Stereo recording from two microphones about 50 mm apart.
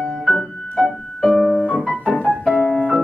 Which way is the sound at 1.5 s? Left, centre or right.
Left.